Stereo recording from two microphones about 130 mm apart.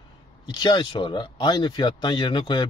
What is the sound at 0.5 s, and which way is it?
Speech, 35° left (ahead or behind).